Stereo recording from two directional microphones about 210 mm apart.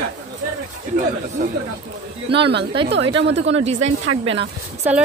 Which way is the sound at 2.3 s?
55° right (ahead or behind).